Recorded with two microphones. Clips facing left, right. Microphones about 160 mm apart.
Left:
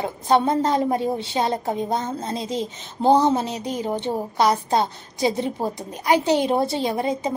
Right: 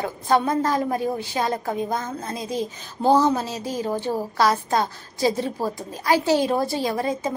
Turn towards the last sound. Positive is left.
turn(degrees=20)  # may be behind; listen again after turning